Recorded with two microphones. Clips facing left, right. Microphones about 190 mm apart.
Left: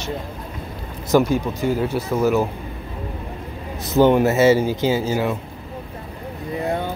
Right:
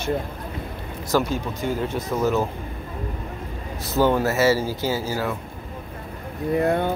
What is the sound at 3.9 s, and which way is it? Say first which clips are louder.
Speech: left 5 dB; 20° left (ahead or behind).